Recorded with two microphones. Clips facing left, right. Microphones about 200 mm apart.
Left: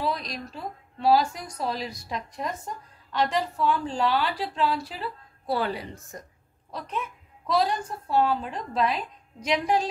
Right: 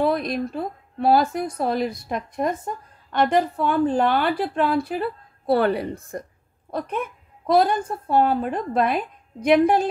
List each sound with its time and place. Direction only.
0.0 s a woman's voice: 55° right (ahead or behind)